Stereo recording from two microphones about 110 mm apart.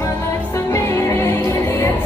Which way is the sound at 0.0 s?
25° left (ahead or behind).